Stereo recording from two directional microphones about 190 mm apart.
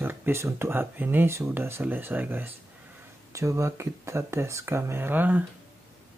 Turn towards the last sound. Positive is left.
turn(degrees=-10)  # may be behind; listen again after turning